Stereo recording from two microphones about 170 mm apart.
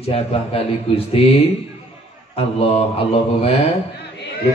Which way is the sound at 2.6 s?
35° left (ahead or behind).